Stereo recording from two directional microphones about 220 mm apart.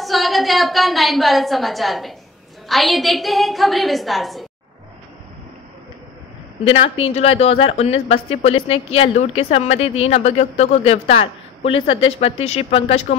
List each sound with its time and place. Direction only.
0.0 s a woman's voice: centre (ahead or behind)
6.6 s speech: 25° left (ahead or behind)